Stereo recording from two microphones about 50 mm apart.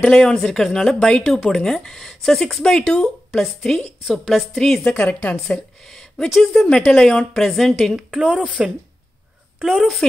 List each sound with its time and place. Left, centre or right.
0.0 s a woman's voice: centre
4.9 s a woman's voice: left
5.3 s speech: centre
8.1 s a woman's voice: centre